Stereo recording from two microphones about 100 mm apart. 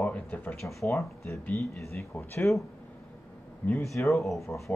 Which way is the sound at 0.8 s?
30° left (ahead or behind).